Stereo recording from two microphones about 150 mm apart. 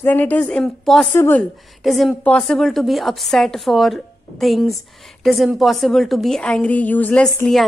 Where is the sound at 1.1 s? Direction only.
15° left (ahead or behind).